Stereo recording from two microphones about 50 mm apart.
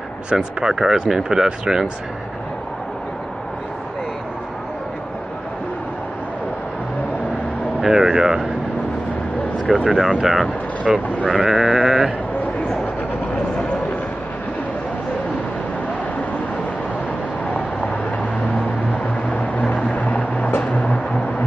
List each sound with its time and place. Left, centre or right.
0.3 s speech: centre
7.8 s speech: centre
9.8 s speech: centre
19.3 s vehicle: left
20.7 s a sound: left